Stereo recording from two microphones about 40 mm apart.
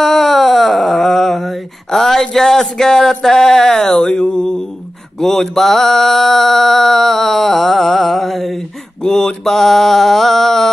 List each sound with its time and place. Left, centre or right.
0.0 s a sound: centre
5.2 s mantra: centre
9.0 s mantra: centre